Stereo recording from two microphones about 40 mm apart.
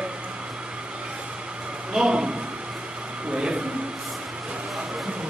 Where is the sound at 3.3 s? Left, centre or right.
Right.